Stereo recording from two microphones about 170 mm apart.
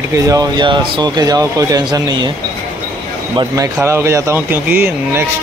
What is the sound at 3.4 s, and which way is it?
Speech, 20° right (ahead or behind).